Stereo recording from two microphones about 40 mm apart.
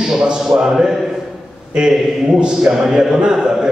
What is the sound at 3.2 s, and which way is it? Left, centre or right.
Speech, right.